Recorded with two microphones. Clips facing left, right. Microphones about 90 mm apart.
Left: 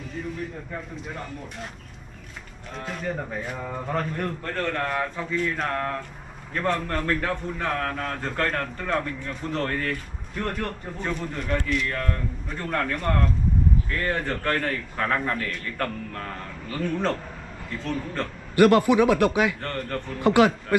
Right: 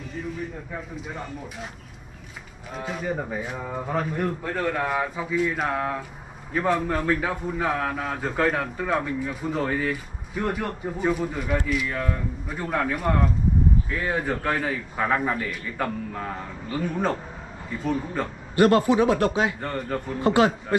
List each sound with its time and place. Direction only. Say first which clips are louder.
0.1 s speech: even; centre (ahead or behind)
2.7 s a man's voice: right 2 dB; 5° right (ahead or behind)
18.6 s speech: left 1 dB; 25° right (ahead or behind)
19.6 s a man's voice: right 2 dB; 10° right (ahead or behind)
20.2 s speech: left 1 dB; 25° right (ahead or behind)